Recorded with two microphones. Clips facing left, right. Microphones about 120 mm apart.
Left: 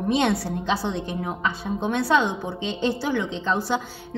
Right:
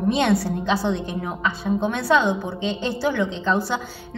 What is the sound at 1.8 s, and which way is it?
A woman's voice, 25° left (ahead or behind).